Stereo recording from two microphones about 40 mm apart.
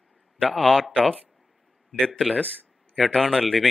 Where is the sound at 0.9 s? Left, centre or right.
Left.